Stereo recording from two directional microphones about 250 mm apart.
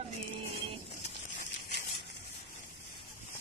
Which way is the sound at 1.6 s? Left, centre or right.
Left.